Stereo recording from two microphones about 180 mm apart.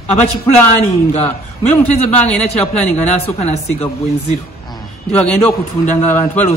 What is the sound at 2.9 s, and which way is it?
Speech, 35° left (ahead or behind).